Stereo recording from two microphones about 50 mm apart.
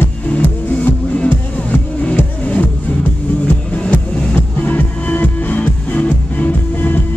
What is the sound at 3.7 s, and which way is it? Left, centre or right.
Music, left.